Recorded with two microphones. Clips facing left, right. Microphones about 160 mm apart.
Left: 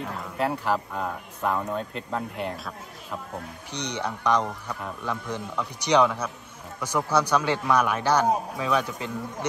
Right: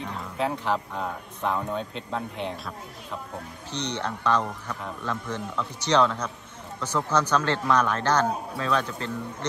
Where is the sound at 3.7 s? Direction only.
15° left (ahead or behind).